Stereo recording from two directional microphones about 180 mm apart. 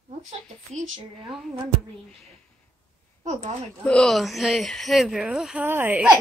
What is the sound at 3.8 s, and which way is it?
Speech, 5° left (ahead or behind).